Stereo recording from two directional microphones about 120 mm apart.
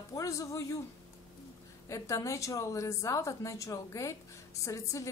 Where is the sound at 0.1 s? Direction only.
25° left (ahead or behind).